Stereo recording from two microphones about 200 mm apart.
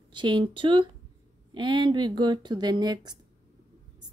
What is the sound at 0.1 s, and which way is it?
Speech, 25° right (ahead or behind).